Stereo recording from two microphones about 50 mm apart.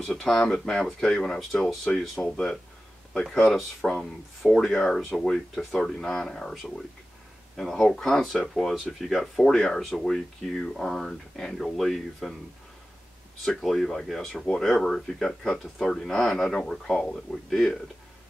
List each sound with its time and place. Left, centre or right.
0.0 s speech: centre
2.2 s speech: left
3.9 s speech: centre
13.4 s speech: centre